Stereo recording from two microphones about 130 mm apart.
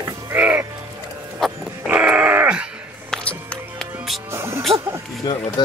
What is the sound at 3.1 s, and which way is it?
Music, 10° left (ahead or behind).